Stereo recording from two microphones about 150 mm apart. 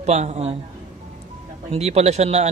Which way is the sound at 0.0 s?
50° right (ahead or behind).